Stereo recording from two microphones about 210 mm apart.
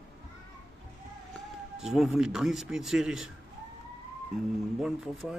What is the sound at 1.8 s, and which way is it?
A man's voice, centre (ahead or behind).